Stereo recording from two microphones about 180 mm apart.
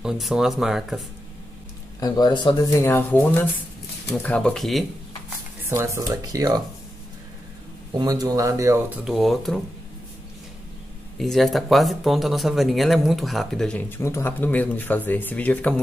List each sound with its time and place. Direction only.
0.0 s speech: centre (ahead or behind)
2.0 s speech: 20° left (ahead or behind); by 4.8 s centre (ahead or behind)
5.7 s speech: 15° right (ahead or behind)
8.0 s speech: 20° right (ahead or behind)
9.0 s speech: centre (ahead or behind)
11.1 s speech: centre (ahead or behind)